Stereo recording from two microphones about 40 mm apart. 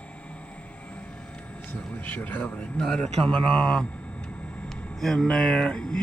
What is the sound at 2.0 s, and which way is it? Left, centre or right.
Speech, left.